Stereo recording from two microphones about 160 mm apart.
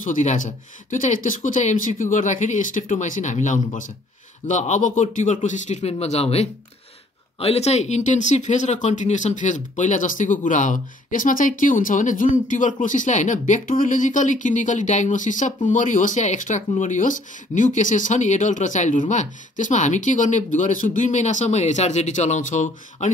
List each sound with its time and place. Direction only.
0.0 s speech: 50° left (ahead or behind)